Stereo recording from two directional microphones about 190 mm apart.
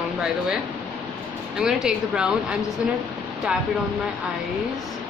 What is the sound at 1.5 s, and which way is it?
A woman's voice, 5° right (ahead or behind).